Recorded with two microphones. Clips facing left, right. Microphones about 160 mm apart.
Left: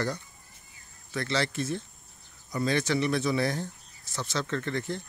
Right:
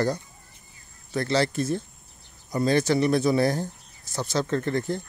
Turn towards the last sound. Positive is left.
turn(degrees=-40)  # may be behind; listen again after turning